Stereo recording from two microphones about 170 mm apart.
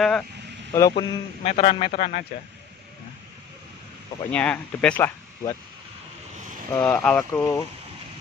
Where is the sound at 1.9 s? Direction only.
50° left (ahead or behind).